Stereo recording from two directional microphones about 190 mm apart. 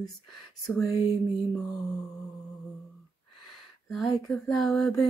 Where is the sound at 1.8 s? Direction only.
Centre (ahead or behind).